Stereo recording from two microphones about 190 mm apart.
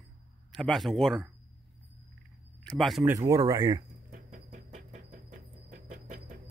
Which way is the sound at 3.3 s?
20° right (ahead or behind).